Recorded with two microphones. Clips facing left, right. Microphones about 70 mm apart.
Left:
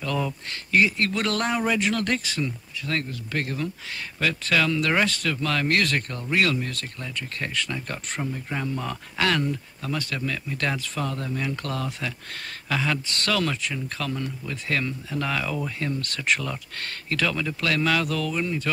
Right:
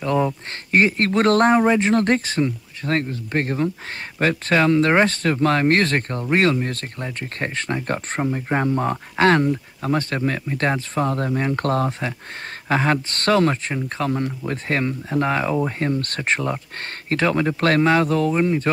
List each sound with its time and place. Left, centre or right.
0.0 s speech: right